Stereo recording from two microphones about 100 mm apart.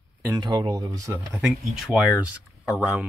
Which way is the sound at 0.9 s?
35° right (ahead or behind).